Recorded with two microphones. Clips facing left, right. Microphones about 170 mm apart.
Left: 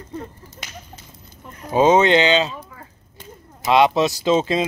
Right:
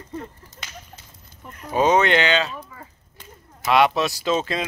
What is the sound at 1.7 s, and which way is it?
Speech, 25° left (ahead or behind).